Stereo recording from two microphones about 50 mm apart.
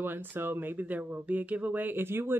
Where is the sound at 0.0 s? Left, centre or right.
Right.